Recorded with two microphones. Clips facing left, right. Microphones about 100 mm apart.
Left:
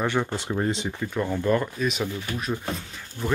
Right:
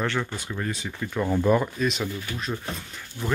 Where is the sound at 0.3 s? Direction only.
30° left (ahead or behind).